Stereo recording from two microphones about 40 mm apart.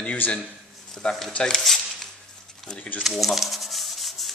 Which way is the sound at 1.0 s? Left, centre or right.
Centre.